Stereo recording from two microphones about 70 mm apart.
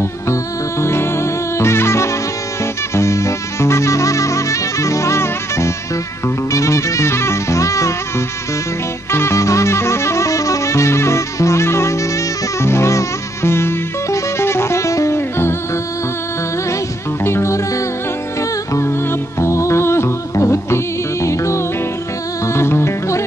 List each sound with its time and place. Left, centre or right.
0.3 s music: left
9.1 s music: left
17.2 s music: left